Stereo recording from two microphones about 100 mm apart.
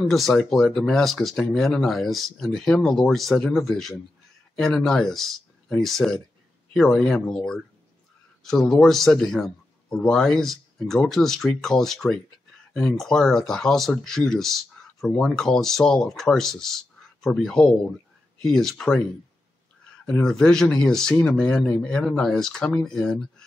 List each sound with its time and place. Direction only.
0.0 s speech: centre (ahead or behind)
7.2 s speech: 10° left (ahead or behind)
20.1 s speech: 5° left (ahead or behind)